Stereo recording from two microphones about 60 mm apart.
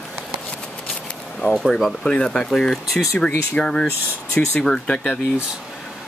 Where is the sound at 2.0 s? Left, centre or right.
Centre.